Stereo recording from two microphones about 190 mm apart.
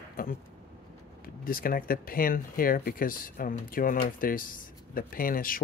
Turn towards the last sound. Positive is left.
turn(degrees=50)  # may be behind; listen again after turning